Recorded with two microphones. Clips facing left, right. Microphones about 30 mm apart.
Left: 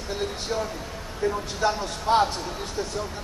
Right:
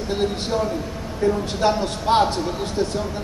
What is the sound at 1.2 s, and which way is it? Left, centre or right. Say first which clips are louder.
A man's voice: right 5 dB; right.